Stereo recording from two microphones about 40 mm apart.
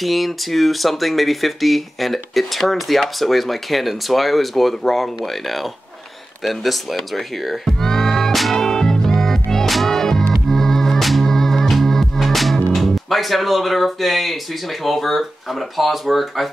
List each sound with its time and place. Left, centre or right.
0.0 s speech: centre
6.4 s music: centre
15.8 s speech: centre